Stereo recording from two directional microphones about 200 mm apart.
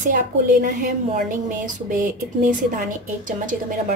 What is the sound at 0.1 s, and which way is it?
A woman's voice, 45° right (ahead or behind).